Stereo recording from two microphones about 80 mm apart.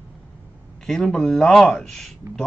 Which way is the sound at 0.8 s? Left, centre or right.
Centre.